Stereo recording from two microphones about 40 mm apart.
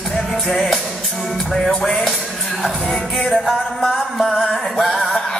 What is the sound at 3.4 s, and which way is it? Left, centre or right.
Music, centre.